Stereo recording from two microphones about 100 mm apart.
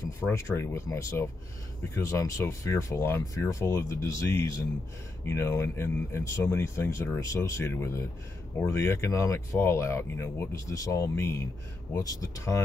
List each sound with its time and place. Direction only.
0.2 s speech: 25° left (ahead or behind)